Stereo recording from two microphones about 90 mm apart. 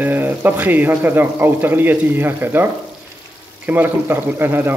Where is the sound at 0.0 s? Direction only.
20° right (ahead or behind).